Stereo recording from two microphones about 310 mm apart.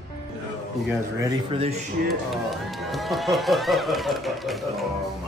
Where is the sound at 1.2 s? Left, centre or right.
Centre.